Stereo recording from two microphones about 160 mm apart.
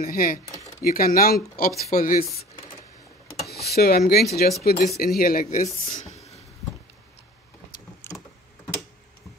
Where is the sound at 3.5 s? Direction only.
80° left; by 6.2 s 55° left (ahead or behind).